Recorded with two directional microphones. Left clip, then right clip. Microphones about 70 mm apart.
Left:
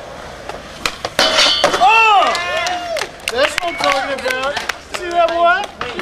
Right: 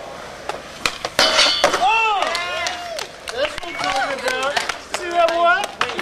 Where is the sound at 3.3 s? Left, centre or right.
Left.